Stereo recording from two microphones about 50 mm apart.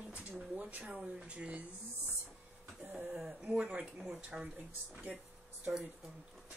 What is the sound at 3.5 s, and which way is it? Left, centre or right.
Speech, right.